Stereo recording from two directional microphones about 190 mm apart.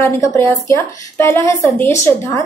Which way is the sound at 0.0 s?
15° left (ahead or behind).